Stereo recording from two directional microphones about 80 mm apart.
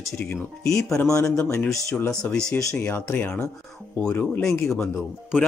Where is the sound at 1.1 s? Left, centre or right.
Left.